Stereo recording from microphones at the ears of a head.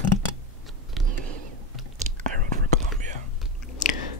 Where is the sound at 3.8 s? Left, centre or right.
Left.